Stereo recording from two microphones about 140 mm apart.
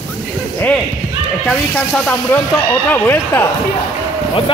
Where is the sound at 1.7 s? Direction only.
5° left (ahead or behind).